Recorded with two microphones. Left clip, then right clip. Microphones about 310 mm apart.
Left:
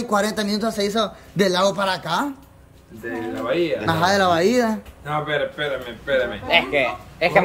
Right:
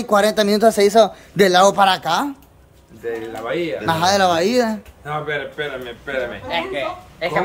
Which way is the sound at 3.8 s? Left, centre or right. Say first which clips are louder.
Right 4 dB; centre.